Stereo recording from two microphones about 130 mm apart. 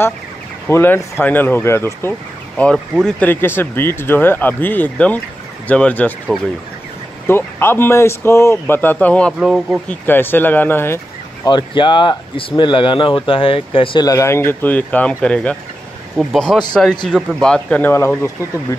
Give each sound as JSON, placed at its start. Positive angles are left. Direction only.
{"t": 0.7, "sound": "a man's voice", "side_deg": 20}
{"t": 3.3, "sound": "speech", "side_deg": 15}
{"t": 7.2, "sound": "speech", "side_deg": 20}
{"t": 9.4, "sound": "a man's voice", "side_deg": -5}
{"t": 9.8, "sound": "speech", "side_deg": 15}
{"t": 11.4, "sound": "speech", "side_deg": 35}
{"t": 14.0, "sound": "a man's voice", "side_deg": 25}